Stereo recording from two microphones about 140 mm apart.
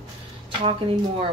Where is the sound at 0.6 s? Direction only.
40° right (ahead or behind).